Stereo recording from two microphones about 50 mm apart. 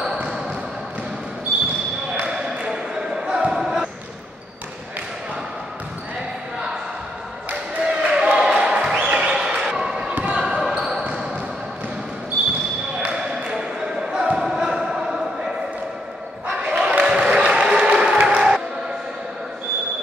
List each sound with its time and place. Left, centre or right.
0.0 s basketball bounce: centre
2.2 s basketball bounce: centre
7.8 s a sound: centre
9.1 s basketball bounce: centre
10.1 s basketball bounce: right
10.6 s basketball bounce: centre
13.0 s basketball bounce: centre
16.5 s a sound: centre
18.2 s music: centre